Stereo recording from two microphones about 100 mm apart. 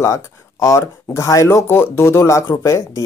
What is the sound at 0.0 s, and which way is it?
Speech, 30° left (ahead or behind).